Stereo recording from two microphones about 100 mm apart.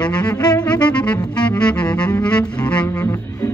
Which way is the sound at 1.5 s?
10° left (ahead or behind).